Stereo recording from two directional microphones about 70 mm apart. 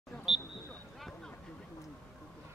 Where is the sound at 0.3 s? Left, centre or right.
Centre.